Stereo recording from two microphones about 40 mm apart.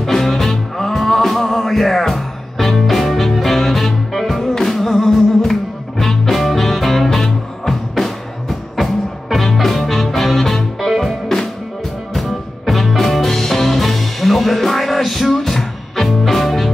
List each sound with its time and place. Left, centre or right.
0.0 s music: centre